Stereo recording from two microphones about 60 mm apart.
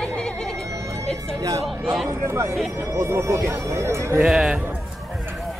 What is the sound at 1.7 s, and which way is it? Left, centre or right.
Speech, centre.